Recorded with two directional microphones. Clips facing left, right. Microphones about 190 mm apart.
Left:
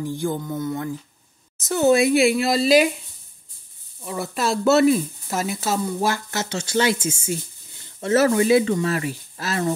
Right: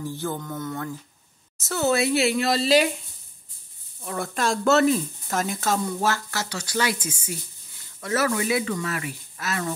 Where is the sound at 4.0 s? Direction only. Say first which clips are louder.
Left 2 dB; 5° left (ahead or behind).